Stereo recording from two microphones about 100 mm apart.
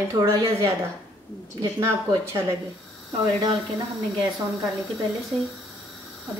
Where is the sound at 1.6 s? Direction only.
45° right (ahead or behind).